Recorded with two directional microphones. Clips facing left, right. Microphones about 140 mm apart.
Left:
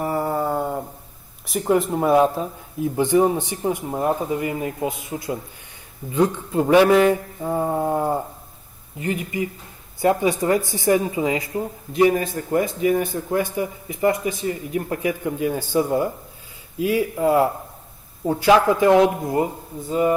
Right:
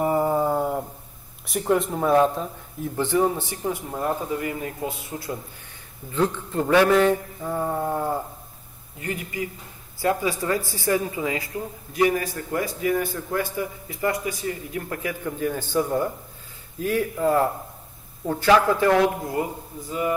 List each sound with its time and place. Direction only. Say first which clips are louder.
0.0 s dog: right 2 dB; 15° right (ahead or behind)
1.6 s speech: left 3 dB; 5° left (ahead or behind)
7.5 s a sound: left 4 dB; 25° left (ahead or behind)
9.0 s speech: left 5 dB; 20° left (ahead or behind)